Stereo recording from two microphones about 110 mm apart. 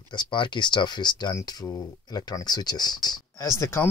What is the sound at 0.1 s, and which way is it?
Speech, 45° left (ahead or behind).